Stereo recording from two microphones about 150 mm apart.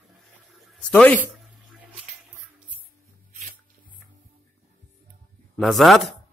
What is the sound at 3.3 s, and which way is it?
Dog, 50° right (ahead or behind).